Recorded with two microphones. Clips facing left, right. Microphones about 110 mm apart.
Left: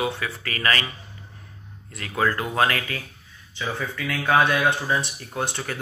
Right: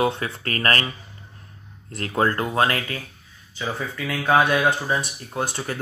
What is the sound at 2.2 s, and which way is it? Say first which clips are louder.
Speech: right 2 dB; 45° right (ahead or behind).